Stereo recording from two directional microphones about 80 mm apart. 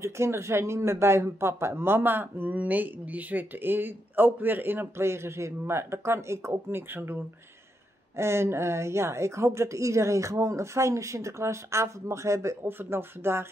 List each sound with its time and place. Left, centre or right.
0.0 s speech: right
8.2 s a woman's voice: right